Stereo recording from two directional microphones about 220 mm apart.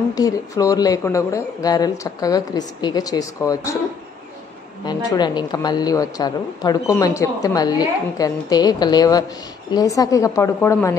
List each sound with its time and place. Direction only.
0.1 s a woman's voice: 15° left (ahead or behind)
4.8 s a woman's voice: 20° left (ahead or behind)